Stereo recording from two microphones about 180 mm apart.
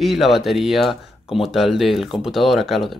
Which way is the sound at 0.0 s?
Centre (ahead or behind).